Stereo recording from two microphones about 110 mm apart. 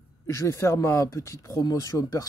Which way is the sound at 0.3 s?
30° left (ahead or behind).